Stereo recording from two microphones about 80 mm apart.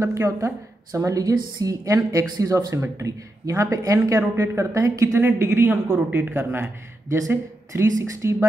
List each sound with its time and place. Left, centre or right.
0.0 s speech: right
7.2 s speech: right